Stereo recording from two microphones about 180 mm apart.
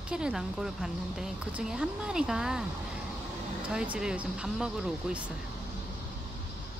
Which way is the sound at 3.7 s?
5° right (ahead or behind).